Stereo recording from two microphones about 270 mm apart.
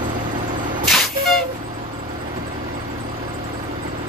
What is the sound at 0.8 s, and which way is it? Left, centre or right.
Vehicle, centre.